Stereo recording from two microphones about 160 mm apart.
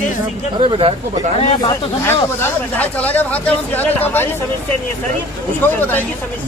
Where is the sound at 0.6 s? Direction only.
35° right (ahead or behind).